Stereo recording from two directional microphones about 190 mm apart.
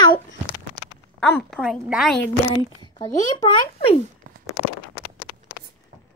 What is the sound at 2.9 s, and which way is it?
A child's voice, 25° left (ahead or behind).